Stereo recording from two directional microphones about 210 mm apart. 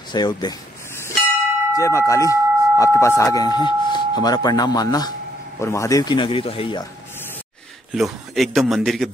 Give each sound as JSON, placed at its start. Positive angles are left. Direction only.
{"t": 0.1, "sound": "a sound", "side_deg": 20}
{"t": 1.8, "sound": "speech", "side_deg": 15}
{"t": 7.9, "sound": "a man's voice", "side_deg": 0}